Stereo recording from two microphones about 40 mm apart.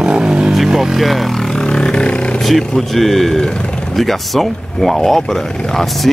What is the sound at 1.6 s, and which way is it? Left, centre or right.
Vehicle, left.